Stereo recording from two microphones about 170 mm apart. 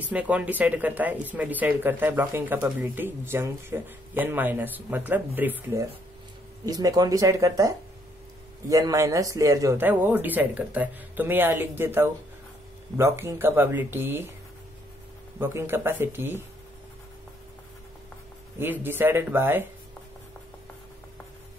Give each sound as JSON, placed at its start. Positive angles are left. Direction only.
{"t": 0.0, "sound": "speech", "side_deg": -10}
{"t": 15.3, "sound": "speech", "side_deg": -15}
{"t": 18.6, "sound": "speech", "side_deg": -10}